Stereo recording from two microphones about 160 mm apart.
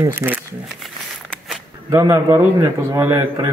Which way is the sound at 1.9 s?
15° right (ahead or behind).